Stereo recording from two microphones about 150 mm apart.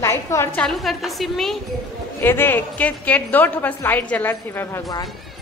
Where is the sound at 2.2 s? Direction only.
15° left (ahead or behind).